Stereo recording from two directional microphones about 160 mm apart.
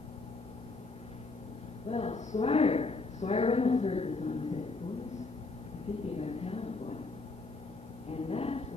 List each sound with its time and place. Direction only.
1.9 s a woman's voice: 40° left (ahead or behind)
6.0 s speech: 40° left (ahead or behind)
8.1 s a sound: 40° left (ahead or behind)